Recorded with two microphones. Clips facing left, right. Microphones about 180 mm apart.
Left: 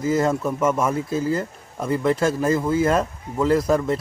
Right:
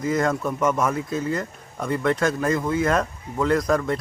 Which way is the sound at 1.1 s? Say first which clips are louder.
Left 3 dB; 30° left (ahead or behind).